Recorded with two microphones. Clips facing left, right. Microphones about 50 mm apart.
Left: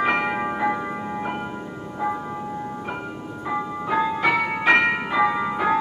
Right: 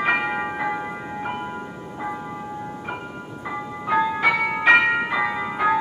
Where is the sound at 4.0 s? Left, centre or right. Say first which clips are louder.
Even; centre.